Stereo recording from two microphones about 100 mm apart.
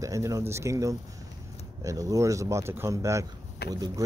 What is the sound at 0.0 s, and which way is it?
Speech, 35° right (ahead or behind).